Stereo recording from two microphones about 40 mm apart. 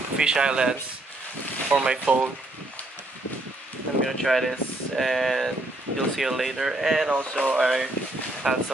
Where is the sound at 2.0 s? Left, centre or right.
Right.